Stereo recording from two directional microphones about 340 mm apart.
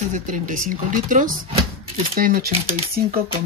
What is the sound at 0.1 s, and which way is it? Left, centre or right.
Speech, right.